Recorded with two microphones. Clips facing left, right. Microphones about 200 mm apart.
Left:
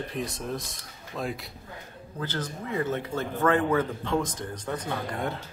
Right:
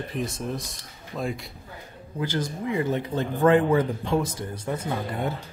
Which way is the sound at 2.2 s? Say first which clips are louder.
Right 5 dB; 15° right (ahead or behind).